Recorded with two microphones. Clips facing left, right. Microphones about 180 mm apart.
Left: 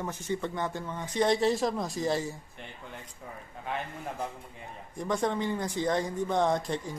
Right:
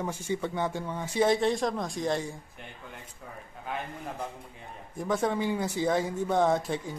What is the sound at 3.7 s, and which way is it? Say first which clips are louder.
Speech: left 1 dB; centre (ahead or behind).